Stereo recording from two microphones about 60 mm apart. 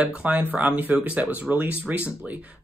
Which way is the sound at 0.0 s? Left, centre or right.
Centre.